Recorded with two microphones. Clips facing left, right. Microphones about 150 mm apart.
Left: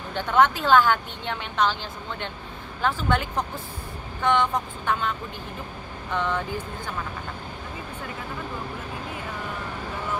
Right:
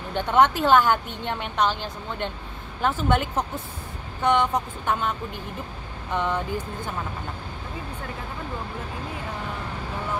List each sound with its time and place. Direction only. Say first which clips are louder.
0.1 s a woman's voice: right 1 dB; 20° right (ahead or behind)
1.4 s a woman's voice: even; 55° right (ahead or behind)
3.0 s a woman's voice: right 2 dB; 20° right (ahead or behind)
6.1 s speech: right 1 dB; 15° right (ahead or behind)